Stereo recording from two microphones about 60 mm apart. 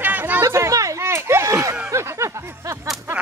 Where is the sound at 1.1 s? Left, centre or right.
Right.